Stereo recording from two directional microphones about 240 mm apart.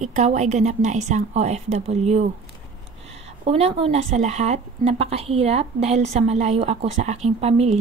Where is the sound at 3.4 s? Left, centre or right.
Right.